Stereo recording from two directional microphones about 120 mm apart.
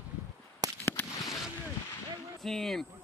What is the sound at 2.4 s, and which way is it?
Speech, 5° left (ahead or behind).